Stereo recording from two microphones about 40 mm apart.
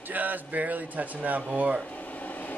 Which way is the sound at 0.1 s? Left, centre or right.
Right.